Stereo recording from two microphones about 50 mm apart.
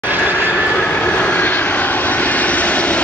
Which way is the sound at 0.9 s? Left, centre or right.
Left.